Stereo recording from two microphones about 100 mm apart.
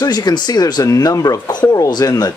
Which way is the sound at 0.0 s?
40° left (ahead or behind).